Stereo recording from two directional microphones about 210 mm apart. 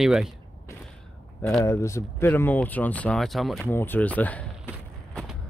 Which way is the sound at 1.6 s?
15° left (ahead or behind).